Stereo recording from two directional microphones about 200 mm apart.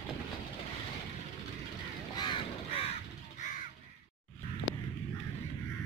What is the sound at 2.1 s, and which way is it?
Crow, 25° left (ahead or behind).